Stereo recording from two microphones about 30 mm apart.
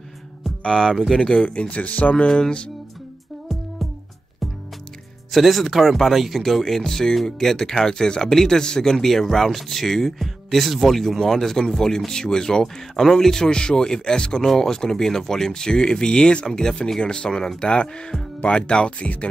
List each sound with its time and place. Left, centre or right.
0.7 s speech: centre
1.3 s speech: left
1.8 s speech: left
5.4 s speech: centre
6.4 s speech: centre; by 8.3 s left
8.3 s speech: centre
8.9 s speech: centre
11.7 s speech: centre
14.4 s speech: centre; by 16.4 s left
16.4 s speech: centre; by 19.0 s left